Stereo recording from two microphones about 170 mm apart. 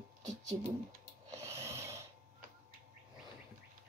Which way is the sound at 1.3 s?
20° right (ahead or behind).